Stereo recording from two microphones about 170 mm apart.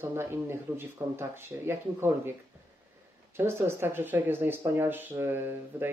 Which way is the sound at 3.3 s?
15° right (ahead or behind).